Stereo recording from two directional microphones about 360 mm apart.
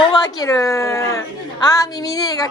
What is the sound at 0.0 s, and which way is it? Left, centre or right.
Speech, centre.